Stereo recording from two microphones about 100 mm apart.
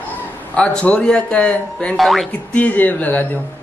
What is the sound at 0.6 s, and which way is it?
A man's voice, 10° left (ahead or behind).